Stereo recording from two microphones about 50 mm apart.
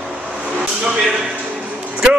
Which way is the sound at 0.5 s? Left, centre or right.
Centre.